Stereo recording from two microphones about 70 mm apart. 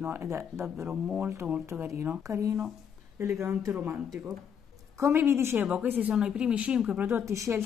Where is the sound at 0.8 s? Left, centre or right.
Centre.